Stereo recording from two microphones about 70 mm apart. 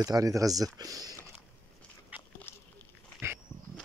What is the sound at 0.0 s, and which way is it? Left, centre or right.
Speech, right.